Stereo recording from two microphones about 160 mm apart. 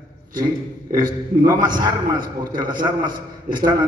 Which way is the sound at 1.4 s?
25° right (ahead or behind).